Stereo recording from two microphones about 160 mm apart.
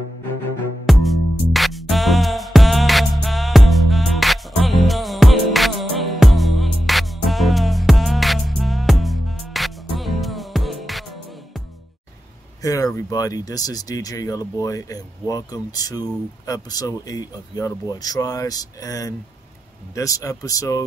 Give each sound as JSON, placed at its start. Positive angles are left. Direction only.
{"t": 0.8, "sound": "music", "side_deg": 0}
{"t": 12.6, "sound": "speech", "side_deg": 20}